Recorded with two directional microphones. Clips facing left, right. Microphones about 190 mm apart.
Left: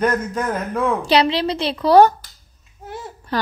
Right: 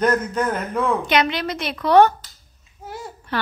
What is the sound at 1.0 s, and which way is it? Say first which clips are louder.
Speech: left 4 dB; 30° left (ahead or behind).